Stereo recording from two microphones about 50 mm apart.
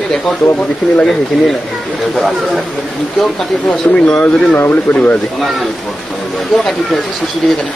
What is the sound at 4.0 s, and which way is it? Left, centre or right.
Speech, left.